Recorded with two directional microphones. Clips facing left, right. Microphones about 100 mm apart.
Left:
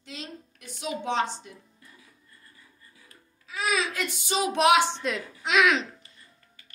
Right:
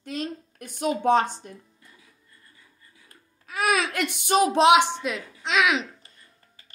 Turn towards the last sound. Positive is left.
turn(degrees=0)  # may be behind; listen again after turning